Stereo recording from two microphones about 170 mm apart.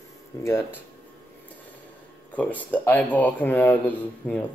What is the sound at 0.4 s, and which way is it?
Speech, 15° left (ahead or behind).